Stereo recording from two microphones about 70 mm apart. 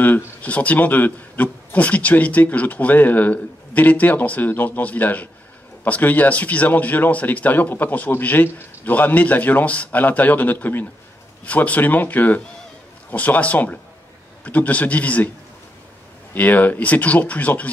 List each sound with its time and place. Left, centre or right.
0.0 s a man's voice: left
16.3 s a man's voice: left